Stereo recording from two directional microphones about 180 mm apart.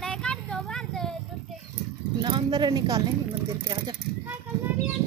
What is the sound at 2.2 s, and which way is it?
Speech, 25° right (ahead or behind).